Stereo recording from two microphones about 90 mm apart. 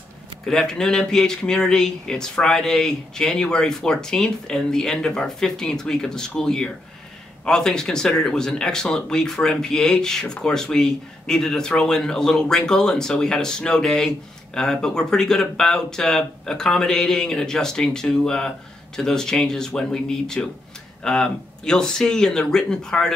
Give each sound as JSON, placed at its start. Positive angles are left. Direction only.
{"t": 0.5, "sound": "speech", "side_deg": 5}